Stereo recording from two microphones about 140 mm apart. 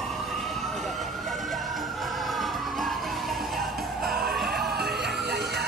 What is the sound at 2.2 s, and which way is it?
Music, centre (ahead or behind).